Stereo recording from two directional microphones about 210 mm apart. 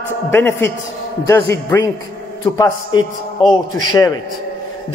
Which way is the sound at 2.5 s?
20° left (ahead or behind).